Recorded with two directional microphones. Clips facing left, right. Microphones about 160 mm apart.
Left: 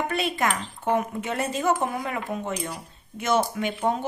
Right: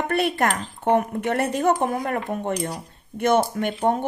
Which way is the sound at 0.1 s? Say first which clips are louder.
Right 4 dB; 60° right (ahead or behind).